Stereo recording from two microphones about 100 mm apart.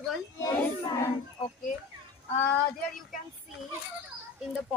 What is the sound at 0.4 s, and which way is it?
Speech, 35° left (ahead or behind).